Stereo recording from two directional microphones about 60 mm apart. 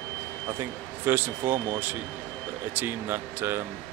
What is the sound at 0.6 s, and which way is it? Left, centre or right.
Speech, right.